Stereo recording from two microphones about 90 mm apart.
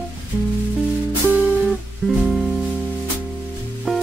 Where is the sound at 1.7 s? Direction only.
Centre (ahead or behind).